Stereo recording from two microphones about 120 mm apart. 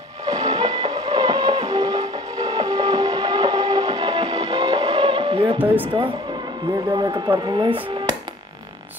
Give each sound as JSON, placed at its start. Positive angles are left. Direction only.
{"t": 0.2, "sound": "music", "side_deg": -35}
{"t": 6.9, "sound": "speech", "side_deg": -35}